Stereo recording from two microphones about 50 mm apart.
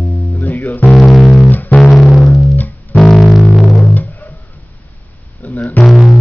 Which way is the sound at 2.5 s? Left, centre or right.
Left.